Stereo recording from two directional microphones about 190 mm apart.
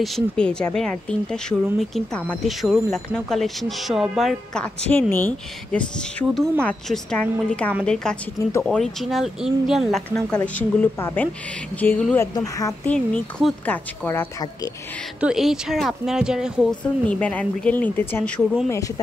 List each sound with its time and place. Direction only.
0.0 s speech: centre (ahead or behind)
12.9 s speech: 5° left (ahead or behind)
14.0 s speech: 15° left (ahead or behind)
15.1 s speech: 5° right (ahead or behind)
17.0 s speech: 5° left (ahead or behind)